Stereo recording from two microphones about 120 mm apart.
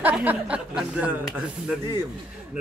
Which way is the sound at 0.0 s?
15° right (ahead or behind).